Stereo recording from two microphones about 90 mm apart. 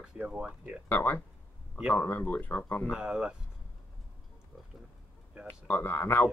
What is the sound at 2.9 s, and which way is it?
Speech, 10° right (ahead or behind).